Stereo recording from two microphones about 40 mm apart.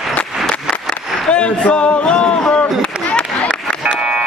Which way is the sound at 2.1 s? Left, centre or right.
Left.